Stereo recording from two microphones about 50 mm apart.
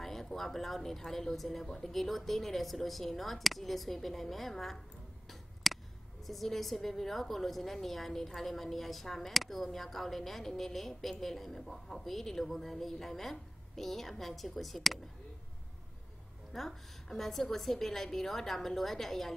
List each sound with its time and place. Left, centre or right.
0.0 s a woman's voice: centre
5.6 s a sound: centre
6.2 s a woman's voice: centre
16.5 s a woman's voice: centre